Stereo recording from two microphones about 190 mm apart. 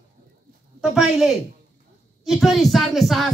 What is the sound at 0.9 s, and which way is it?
Speech, 5° right (ahead or behind).